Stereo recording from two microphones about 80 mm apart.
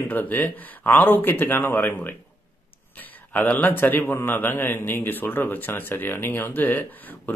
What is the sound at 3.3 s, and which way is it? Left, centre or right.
A man's voice, left.